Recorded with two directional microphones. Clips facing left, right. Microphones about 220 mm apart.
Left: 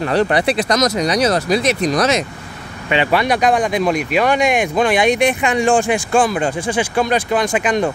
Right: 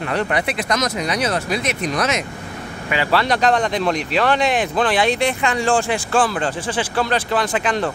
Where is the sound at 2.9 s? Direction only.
20° left (ahead or behind).